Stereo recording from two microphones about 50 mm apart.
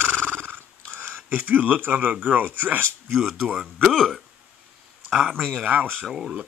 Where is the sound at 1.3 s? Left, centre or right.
Right.